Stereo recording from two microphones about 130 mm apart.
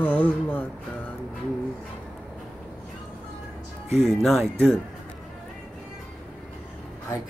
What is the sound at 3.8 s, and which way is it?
Speech, centre (ahead or behind).